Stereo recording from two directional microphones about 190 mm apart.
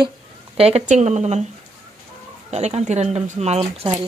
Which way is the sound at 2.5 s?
35° right (ahead or behind).